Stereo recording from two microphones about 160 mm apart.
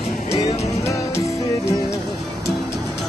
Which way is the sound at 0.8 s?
20° left (ahead or behind).